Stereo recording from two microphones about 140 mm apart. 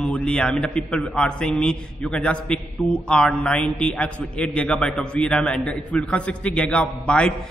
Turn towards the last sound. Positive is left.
turn(degrees=5)  # may be behind; listen again after turning